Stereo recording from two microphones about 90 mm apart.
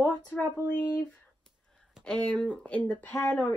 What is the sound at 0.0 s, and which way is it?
Speech, 15° left (ahead or behind).